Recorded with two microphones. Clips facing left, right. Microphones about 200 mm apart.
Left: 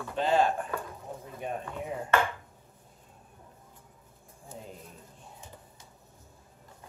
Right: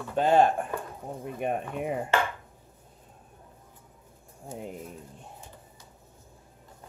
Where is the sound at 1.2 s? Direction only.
65° right (ahead or behind).